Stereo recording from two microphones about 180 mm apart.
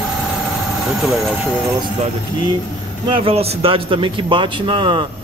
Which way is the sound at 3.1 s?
30° right (ahead or behind).